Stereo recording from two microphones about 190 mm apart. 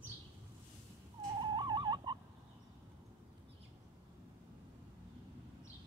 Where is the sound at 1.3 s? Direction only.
25° right (ahead or behind).